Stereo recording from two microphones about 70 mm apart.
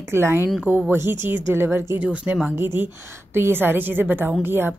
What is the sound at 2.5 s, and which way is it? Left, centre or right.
Speech, right.